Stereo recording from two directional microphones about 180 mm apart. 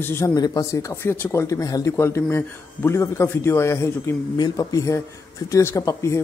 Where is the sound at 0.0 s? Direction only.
15° left (ahead or behind).